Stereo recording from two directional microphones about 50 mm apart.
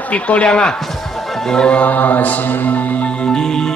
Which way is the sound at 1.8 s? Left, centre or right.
Left.